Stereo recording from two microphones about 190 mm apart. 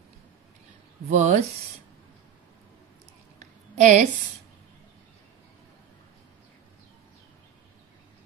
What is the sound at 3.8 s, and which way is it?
Speech, 40° right (ahead or behind).